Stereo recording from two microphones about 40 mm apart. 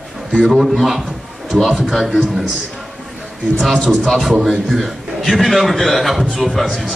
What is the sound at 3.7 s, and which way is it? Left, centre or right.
Speech, right.